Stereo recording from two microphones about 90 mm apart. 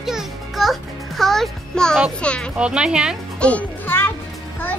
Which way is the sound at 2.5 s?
10° right (ahead or behind).